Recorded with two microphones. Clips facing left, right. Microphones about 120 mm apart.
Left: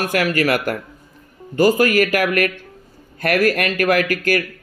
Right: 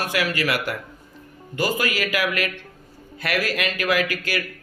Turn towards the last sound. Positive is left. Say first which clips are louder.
# left 6 dB
turn(degrees=50)  # may be behind; listen again after turning